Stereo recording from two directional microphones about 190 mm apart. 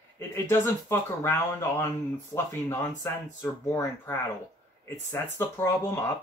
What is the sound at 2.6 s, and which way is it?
Speech, 15° left (ahead or behind).